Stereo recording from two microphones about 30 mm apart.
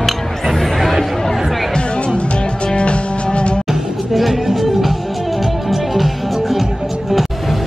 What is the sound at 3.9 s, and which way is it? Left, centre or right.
Music, centre.